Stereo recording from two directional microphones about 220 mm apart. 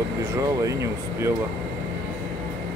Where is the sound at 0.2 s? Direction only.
15° right (ahead or behind).